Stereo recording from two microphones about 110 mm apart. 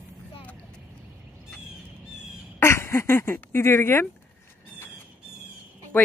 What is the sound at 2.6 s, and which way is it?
Speech, 20° left (ahead or behind).